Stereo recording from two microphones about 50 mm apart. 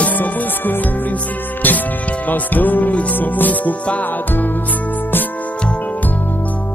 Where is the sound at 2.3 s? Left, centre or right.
Left.